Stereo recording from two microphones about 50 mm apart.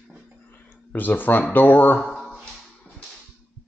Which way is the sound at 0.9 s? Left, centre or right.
Left.